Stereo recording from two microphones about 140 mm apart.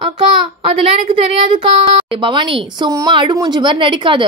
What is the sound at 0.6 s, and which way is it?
Speech, 40° right (ahead or behind).